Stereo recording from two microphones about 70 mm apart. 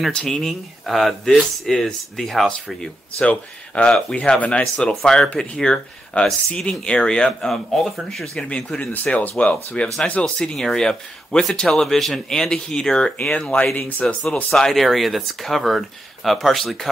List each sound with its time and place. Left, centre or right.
0.1 s speech: centre
8.9 s speech: left
14.0 s speech: centre